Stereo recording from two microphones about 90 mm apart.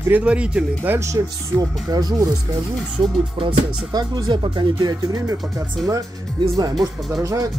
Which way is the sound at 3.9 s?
55° right (ahead or behind).